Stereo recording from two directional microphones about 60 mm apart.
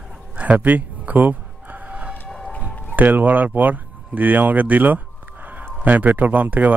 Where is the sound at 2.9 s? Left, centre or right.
Right.